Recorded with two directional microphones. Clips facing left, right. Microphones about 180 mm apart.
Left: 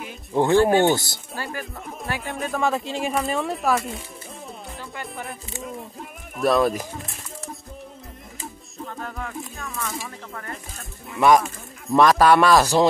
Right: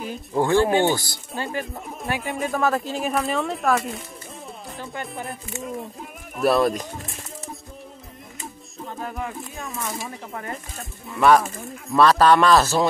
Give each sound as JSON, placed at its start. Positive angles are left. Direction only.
{"t": 0.4, "sound": "speech", "side_deg": 20}
{"t": 1.3, "sound": "speech", "side_deg": -20}
{"t": 2.2, "sound": "speech", "side_deg": 0}
{"t": 5.0, "sound": "speech", "side_deg": 0}
{"t": 8.9, "sound": "speech", "side_deg": -15}
{"t": 11.1, "sound": "speech", "side_deg": 15}